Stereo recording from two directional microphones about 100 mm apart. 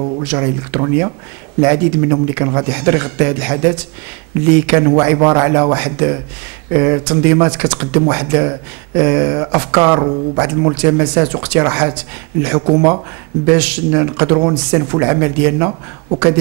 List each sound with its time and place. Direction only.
0.0 s speech: 20° right (ahead or behind)